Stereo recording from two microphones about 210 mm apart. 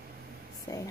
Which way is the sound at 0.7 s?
15° left (ahead or behind).